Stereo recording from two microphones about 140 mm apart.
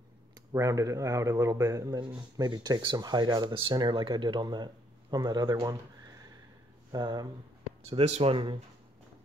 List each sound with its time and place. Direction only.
0.5 s speech: 25° right (ahead or behind)
2.0 s speech: 35° right (ahead or behind)
6.9 s speech: 30° right (ahead or behind)
8.0 s speech: 50° right (ahead or behind)